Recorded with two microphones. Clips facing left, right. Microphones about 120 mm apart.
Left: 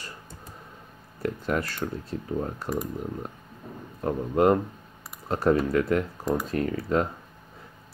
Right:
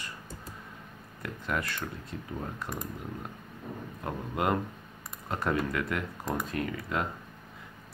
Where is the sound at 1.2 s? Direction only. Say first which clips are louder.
Left 6 dB; 35° left (ahead or behind).